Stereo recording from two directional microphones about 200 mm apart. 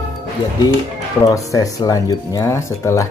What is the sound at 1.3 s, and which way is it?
Speech, 15° left (ahead or behind).